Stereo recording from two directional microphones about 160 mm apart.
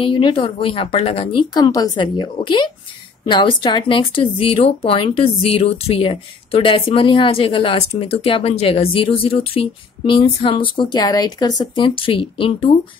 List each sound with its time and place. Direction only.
0.0 s speech: 35° left (ahead or behind)